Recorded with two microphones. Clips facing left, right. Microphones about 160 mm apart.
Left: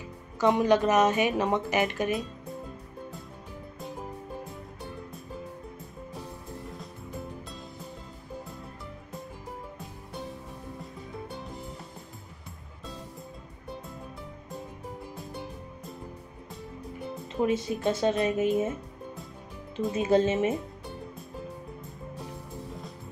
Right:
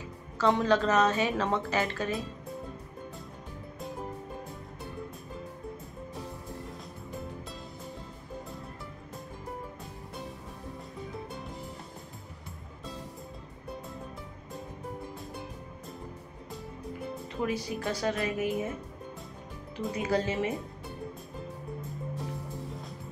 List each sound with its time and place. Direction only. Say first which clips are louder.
0.4 s speech: left 3 dB; 15° left (ahead or behind)
10.8 s music: even; centre (ahead or behind)
17.4 s a woman's voice: left 5 dB; 25° left (ahead or behind)
19.9 s a woman's voice: left 6 dB; 25° left (ahead or behind)